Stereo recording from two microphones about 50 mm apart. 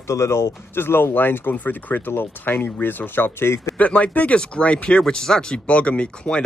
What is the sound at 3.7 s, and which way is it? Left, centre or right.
Speech, left.